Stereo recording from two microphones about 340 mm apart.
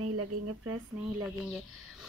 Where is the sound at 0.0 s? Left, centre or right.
Right.